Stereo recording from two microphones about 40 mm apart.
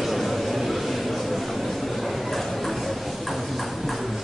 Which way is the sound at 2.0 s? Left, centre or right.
Centre.